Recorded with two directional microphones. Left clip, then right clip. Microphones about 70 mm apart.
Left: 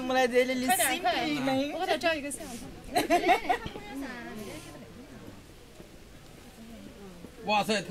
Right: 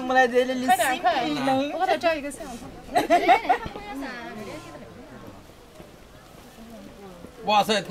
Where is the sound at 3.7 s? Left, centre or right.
Right.